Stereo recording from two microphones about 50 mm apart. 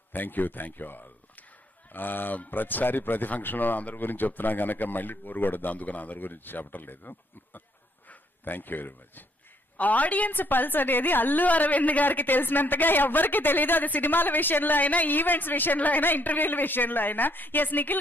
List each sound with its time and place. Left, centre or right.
0.1 s a woman's voice: left